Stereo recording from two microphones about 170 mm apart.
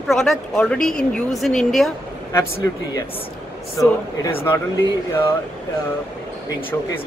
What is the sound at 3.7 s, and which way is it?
Speech, 15° left (ahead or behind).